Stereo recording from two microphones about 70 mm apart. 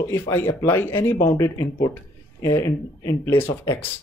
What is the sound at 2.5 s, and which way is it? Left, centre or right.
Speech, left.